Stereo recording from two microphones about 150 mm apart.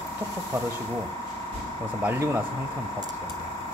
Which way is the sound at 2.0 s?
20° right (ahead or behind).